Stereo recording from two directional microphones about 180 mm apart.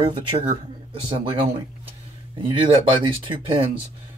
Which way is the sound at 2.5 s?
30° right (ahead or behind).